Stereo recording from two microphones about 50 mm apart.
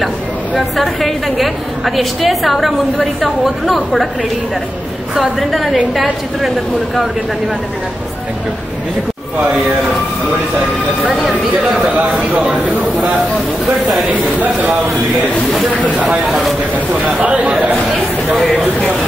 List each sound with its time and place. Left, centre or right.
0.6 s a woman's voice: centre
5.4 s a woman's voice: centre
11.6 s a man's voice: centre
12.0 s speech: right
14.4 s speech: right
15.8 s speech: right
16.3 s speech: centre
16.7 s speech: right